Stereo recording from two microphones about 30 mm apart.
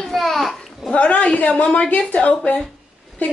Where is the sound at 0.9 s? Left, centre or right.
Left.